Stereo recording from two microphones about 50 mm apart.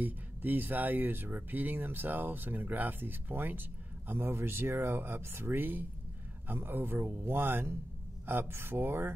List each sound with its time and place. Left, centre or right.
0.0 s speech: right